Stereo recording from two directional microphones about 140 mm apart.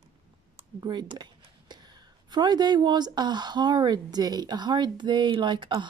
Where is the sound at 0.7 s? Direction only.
30° right (ahead or behind).